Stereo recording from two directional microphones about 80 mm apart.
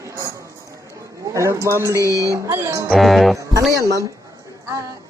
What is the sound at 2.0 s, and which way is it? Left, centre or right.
Speech, left.